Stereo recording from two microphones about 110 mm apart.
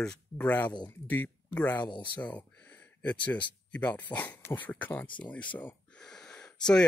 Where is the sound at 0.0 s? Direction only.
15° left (ahead or behind).